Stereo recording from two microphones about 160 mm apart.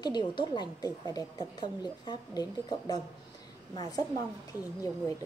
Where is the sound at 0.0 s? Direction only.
25° left (ahead or behind).